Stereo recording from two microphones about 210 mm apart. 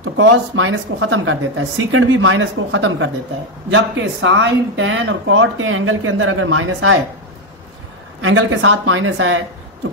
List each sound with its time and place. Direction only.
0.0 s speech: 75° right (ahead or behind)
8.2 s speech: 70° right (ahead or behind)